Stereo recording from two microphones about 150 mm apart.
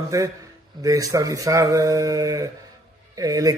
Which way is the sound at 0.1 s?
20° right (ahead or behind).